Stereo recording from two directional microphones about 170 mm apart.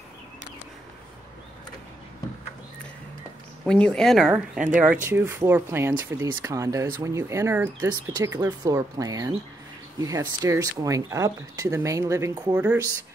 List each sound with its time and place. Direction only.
3.6 s speech: 5° left (ahead or behind)
5.0 s speech: 15° right (ahead or behind)